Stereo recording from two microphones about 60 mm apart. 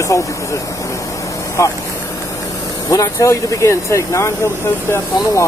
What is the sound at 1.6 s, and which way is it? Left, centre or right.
Speech, left.